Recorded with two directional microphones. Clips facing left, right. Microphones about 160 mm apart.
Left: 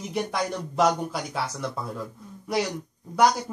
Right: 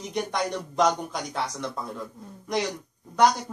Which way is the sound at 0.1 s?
5° left (ahead or behind).